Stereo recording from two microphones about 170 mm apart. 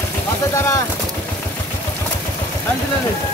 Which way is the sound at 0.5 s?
15° left (ahead or behind).